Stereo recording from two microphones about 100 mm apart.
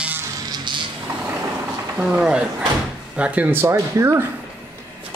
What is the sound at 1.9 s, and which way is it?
Speech, 10° right (ahead or behind).